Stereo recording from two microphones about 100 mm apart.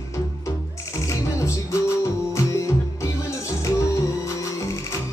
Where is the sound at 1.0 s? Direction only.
30° left (ahead or behind).